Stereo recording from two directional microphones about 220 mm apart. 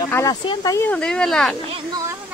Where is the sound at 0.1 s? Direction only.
15° left (ahead or behind).